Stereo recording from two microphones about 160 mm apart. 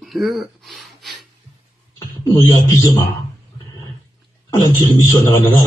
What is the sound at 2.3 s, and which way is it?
Speech, 25° left (ahead or behind).